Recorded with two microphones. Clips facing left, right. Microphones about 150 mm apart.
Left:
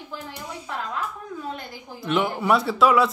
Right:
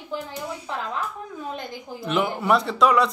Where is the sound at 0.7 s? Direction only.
25° right (ahead or behind).